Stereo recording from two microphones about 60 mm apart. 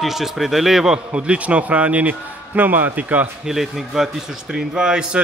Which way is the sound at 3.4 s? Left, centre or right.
Centre.